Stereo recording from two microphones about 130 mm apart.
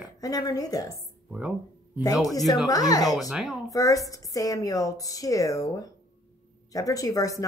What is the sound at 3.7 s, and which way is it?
Speech, 25° left (ahead or behind).